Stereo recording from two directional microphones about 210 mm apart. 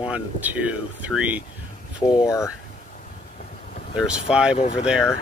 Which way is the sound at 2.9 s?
35° left (ahead or behind).